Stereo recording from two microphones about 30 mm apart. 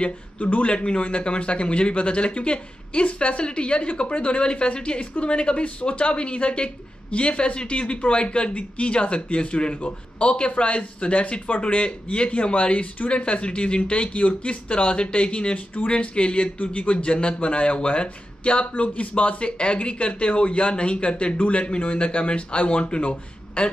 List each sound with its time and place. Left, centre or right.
0.4 s a man's voice: left
19.6 s a man's voice: left